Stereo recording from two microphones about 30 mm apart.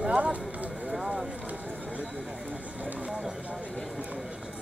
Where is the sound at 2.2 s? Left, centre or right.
Right.